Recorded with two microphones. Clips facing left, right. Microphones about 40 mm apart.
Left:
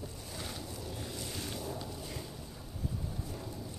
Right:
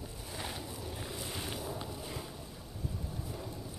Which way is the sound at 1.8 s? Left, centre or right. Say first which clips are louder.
Right 1 dB; centre.